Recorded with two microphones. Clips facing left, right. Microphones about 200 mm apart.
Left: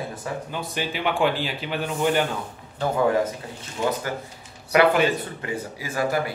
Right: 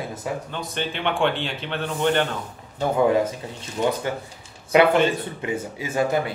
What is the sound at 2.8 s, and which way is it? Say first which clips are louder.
Speech: right 2 dB; 20° right (ahead or behind).